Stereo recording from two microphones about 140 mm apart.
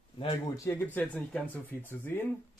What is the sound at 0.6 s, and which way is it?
Speech, 20° left (ahead or behind).